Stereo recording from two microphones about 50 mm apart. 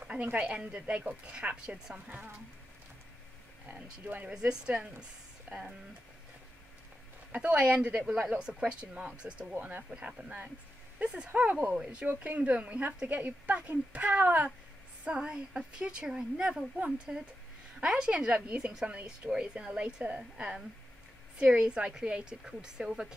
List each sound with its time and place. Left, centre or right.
0.0 s a woman's voice: right
4.0 s a woman's voice: right
4.3 s a woman's voice: centre
7.3 s a woman's voice: right
9.6 s a woman's voice: right
9.8 s a woman's voice: right
15.0 s a woman's voice: centre